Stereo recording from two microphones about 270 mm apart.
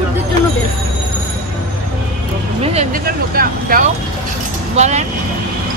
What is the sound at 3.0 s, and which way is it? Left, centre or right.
Speech, right.